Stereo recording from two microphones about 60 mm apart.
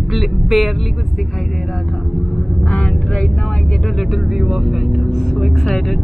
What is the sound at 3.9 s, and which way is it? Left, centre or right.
Speech, centre.